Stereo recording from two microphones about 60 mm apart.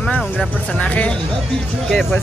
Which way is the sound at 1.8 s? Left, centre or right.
Centre.